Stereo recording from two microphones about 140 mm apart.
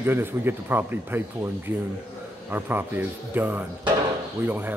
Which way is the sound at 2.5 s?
15° right (ahead or behind).